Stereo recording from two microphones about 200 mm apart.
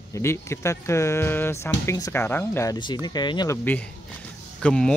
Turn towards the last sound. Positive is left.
turn(degrees=5)  # may be behind; listen again after turning